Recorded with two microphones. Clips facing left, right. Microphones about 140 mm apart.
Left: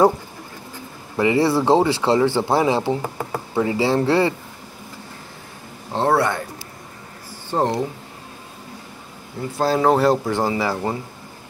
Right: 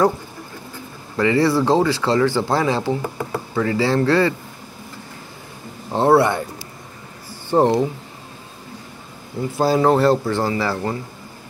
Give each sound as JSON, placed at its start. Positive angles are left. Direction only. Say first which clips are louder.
{"t": 1.1, "sound": "speech", "louder": "right 1 dB", "side_deg": 20}
{"t": 5.9, "sound": "a sound", "louder": "right 4 dB", "side_deg": -10}
{"t": 7.5, "sound": "speech", "louder": "right 5 dB", "side_deg": -15}
{"t": 9.6, "sound": "speech", "louder": "right 1 dB", "side_deg": -5}
{"t": 10.2, "sound": "speech", "louder": "even", "side_deg": 15}